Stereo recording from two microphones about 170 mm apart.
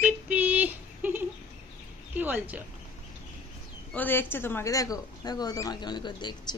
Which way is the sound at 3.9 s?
10° left (ahead or behind).